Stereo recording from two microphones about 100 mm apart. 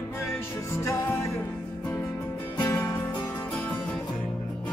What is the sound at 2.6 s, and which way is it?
Music, 25° left (ahead or behind).